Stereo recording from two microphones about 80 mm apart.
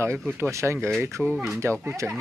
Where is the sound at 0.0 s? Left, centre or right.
Right.